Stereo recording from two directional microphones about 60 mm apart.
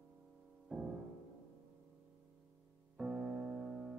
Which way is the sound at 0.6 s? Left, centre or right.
Centre.